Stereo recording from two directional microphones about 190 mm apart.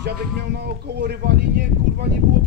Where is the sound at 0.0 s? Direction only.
60° right (ahead or behind).